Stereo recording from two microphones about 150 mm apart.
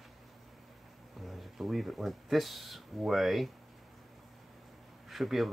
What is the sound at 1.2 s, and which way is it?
Speech, centre (ahead or behind).